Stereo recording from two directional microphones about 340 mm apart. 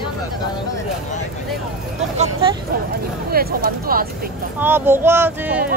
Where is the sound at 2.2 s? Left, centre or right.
Centre.